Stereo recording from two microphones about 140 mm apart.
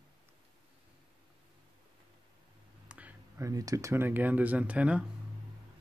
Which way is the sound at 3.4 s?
25° right (ahead or behind).